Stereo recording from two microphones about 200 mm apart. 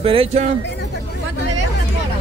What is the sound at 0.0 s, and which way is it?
Speech, 30° right (ahead or behind).